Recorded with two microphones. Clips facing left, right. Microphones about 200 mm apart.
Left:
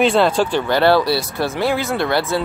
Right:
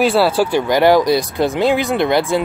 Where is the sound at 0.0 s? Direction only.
5° right (ahead or behind).